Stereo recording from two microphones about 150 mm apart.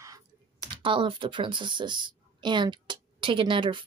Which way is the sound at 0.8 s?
35° right (ahead or behind).